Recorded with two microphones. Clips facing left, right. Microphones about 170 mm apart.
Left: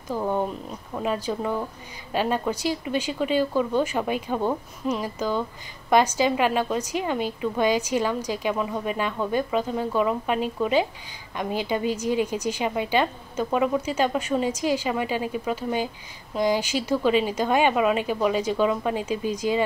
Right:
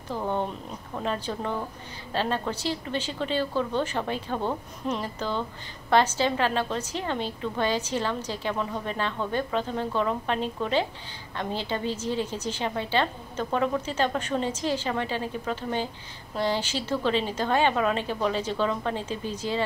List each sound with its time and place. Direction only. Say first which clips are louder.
0.1 s a woman's voice: left 3 dB; 5° left (ahead or behind)